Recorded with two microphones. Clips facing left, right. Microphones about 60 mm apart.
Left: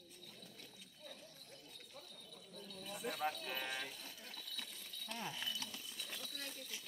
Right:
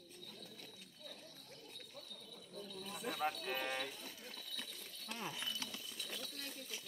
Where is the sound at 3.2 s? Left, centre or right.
Right.